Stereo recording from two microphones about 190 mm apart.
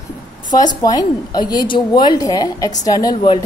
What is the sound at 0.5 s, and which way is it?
A woman's voice, 20° left (ahead or behind).